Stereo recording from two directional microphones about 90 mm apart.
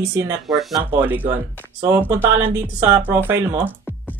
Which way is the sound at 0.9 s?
25° right (ahead or behind).